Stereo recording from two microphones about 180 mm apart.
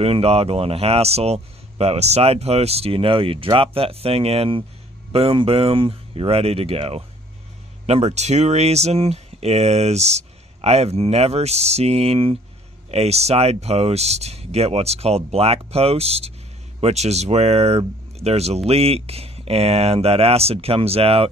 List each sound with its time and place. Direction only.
0.0 s speech: 35° right (ahead or behind)